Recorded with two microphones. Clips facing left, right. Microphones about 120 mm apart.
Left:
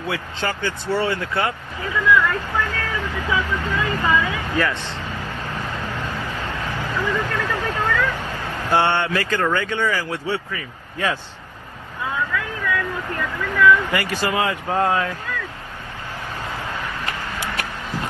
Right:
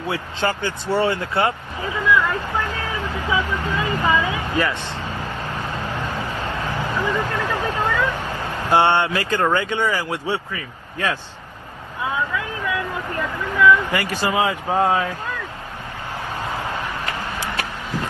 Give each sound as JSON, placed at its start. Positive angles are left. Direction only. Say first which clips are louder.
{"t": 0.1, "sound": "vehicle", "louder": "right 3 dB", "side_deg": -20}
{"t": 9.4, "sound": "speech", "louder": "right 4 dB", "side_deg": -20}
{"t": 12.4, "sound": "vehicle", "louder": "even", "side_deg": -20}
{"t": 13.6, "sound": "speech", "louder": "even", "side_deg": -20}
{"t": 16.4, "sound": "vehicle", "louder": "right 3 dB", "side_deg": -20}